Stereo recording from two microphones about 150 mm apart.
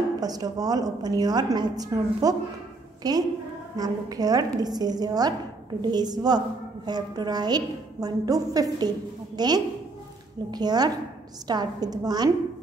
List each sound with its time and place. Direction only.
0.2 s a woman's voice: 25° right (ahead or behind)